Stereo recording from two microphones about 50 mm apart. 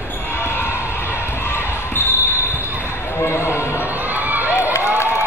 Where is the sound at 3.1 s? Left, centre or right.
Left.